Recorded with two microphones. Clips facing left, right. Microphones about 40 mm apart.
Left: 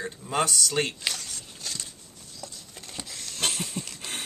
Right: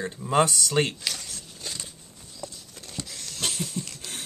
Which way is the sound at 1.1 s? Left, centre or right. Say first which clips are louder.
Even; centre.